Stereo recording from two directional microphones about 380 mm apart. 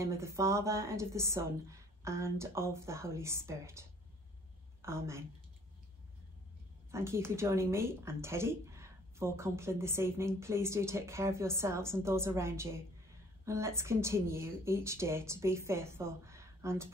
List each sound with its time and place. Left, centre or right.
0.0 s speech: centre
4.8 s speech: centre
6.9 s speech: centre